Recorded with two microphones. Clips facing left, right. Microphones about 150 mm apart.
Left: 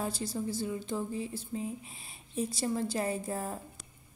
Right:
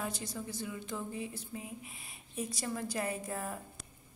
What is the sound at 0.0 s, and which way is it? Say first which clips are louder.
A woman's voice: left 5 dB; 30° left (ahead or behind).